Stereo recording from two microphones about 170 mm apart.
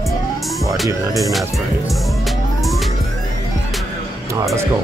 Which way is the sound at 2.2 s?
Centre (ahead or behind).